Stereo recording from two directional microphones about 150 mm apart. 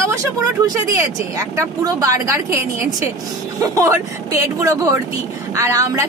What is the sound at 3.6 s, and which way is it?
Speech, 20° right (ahead or behind).